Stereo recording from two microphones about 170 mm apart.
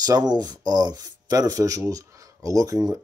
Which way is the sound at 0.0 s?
25° right (ahead or behind).